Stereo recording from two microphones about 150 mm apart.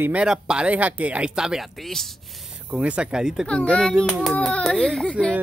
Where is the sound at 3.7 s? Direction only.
5° left (ahead or behind).